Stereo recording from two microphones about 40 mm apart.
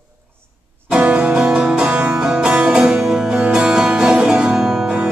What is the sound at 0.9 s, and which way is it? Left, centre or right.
Music, right.